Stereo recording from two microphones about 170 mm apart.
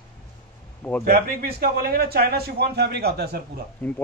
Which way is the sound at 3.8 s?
10° left (ahead or behind).